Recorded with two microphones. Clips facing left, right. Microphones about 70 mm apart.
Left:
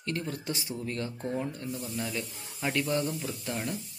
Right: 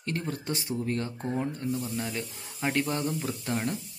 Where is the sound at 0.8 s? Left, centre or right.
Right.